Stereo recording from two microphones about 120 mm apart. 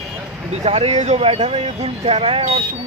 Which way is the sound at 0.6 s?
60° right (ahead or behind).